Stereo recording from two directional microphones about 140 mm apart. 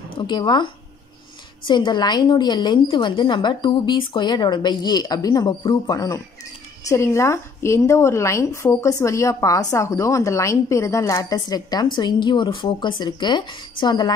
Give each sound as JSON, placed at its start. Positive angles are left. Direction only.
{"t": 0.2, "sound": "a woman's voice", "side_deg": 35}